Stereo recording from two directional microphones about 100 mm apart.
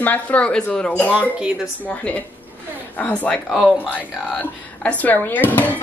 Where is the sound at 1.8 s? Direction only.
15° left (ahead or behind).